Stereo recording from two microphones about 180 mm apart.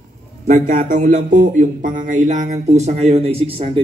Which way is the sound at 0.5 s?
45° right (ahead or behind).